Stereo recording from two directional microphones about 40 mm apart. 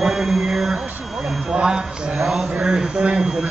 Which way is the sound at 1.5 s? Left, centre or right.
Right.